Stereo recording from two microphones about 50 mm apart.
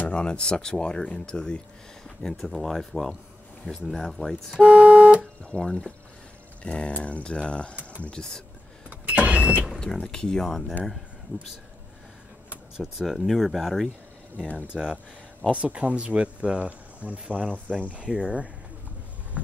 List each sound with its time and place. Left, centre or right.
0.0 s speech: centre
2.0 s speech: centre
4.6 s speech: right
5.6 s speech: centre
6.6 s speech: left
9.0 s vehicle: right
9.9 s speech: centre
11.3 s speech: left
13.0 s speech: centre
14.7 s speech: centre
17.4 s speech: centre
19.4 s a sound: right